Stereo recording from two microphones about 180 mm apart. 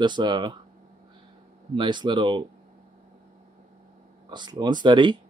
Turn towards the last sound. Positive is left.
turn(degrees=-25)  # may be behind; listen again after turning